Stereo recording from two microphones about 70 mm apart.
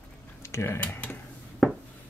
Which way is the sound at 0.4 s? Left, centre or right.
Left.